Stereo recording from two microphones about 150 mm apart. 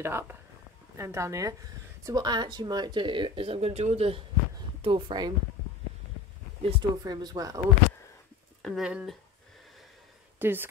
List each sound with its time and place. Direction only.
0.0 s speech: 15° right (ahead or behind); by 5.3 s 30° right (ahead or behind)
6.6 s speech: 40° right (ahead or behind)
7.1 s speech: 25° right (ahead or behind)
8.6 s speech: 5° right (ahead or behind)
10.4 s speech: 15° right (ahead or behind)